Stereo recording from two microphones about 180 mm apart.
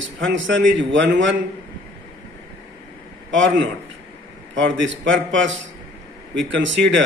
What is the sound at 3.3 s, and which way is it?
A man's voice, 90° right.